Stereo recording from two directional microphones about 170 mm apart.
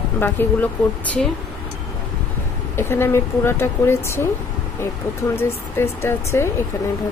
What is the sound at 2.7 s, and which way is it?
Speech, 15° left (ahead or behind).